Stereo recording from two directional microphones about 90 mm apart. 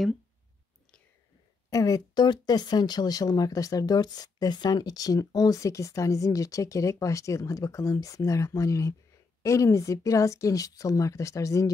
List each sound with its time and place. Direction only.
1.7 s speech: 40° left (ahead or behind)
2.1 s speech: 55° left (ahead or behind); by 11.7 s 35° left (ahead or behind)